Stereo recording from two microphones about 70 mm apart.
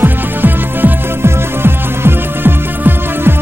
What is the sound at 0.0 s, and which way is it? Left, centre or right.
Music, right.